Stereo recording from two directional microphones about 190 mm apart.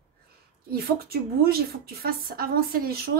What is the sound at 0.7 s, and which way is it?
A woman's voice, 55° right (ahead or behind).